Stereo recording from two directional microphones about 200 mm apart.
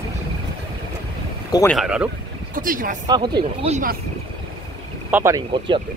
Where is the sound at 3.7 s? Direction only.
45° right (ahead or behind).